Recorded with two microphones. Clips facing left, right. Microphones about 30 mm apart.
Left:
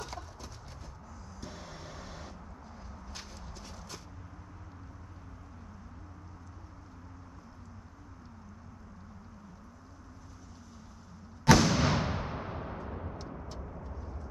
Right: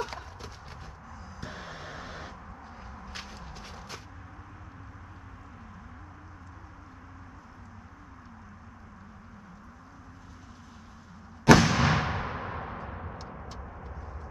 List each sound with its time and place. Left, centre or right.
0.0 s clip-clop: right
1.4 s a sound: right
11.5 s artillery fire: right